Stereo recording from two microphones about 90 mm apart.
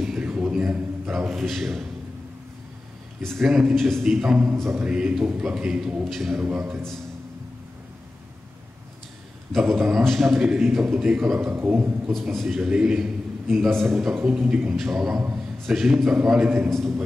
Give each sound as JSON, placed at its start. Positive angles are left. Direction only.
{"t": 0.0, "sound": "a man's voice", "side_deg": -10}
{"t": 3.2, "sound": "a man's voice", "side_deg": 0}
{"t": 9.5, "sound": "a man's voice", "side_deg": -5}
{"t": 11.5, "sound": "a man's voice", "side_deg": -20}
{"t": 12.1, "sound": "a man's voice", "side_deg": 5}
{"t": 12.5, "sound": "a man's voice", "side_deg": -10}
{"t": 14.4, "sound": "a man's voice", "side_deg": -10}
{"t": 16.7, "sound": "a man's voice", "side_deg": 5}